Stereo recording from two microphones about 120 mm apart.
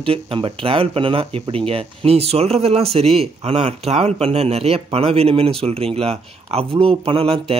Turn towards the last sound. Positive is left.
turn(degrees=-50)  # may be behind; listen again after turning